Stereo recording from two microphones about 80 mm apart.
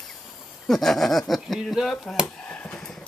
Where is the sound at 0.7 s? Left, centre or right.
Centre.